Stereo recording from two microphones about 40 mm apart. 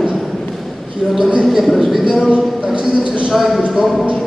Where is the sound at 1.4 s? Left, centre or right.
Centre.